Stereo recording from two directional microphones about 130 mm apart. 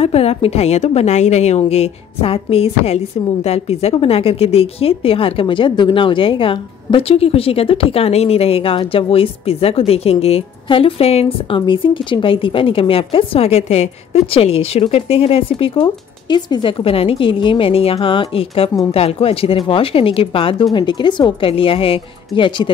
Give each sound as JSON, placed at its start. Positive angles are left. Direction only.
{"t": 0.0, "sound": "a woman's voice", "side_deg": 50}